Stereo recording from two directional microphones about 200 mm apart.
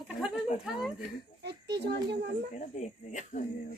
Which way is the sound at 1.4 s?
55° right (ahead or behind).